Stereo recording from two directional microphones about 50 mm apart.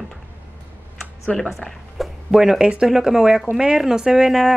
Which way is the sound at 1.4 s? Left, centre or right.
Centre.